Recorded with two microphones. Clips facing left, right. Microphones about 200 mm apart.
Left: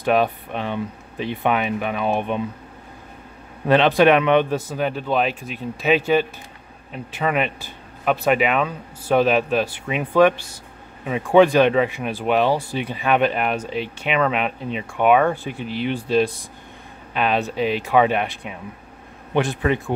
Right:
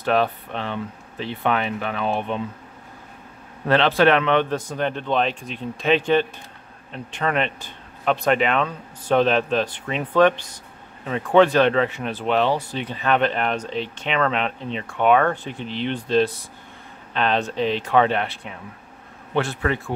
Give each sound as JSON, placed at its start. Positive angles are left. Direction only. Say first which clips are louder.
{"t": 0.0, "sound": "speech", "louder": "left 2 dB", "side_deg": 15}
{"t": 3.6, "sound": "speech", "louder": "left 3 dB", "side_deg": 15}